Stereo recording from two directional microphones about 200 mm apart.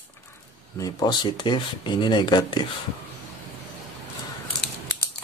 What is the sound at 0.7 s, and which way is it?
Speech, 20° left (ahead or behind).